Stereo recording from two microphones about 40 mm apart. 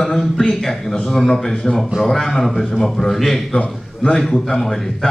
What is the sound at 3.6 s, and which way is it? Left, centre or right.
Speech, centre.